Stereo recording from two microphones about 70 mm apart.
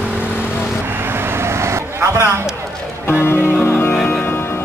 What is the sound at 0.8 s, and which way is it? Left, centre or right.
Vehicle, right.